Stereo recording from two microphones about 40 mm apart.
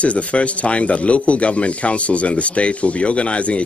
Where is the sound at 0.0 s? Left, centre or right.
Left.